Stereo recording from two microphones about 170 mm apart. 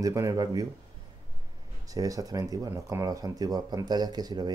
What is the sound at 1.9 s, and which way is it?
Speech, 20° right (ahead or behind).